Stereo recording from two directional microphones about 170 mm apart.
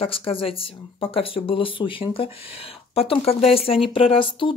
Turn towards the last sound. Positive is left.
turn(degrees=30)  # may be behind; listen again after turning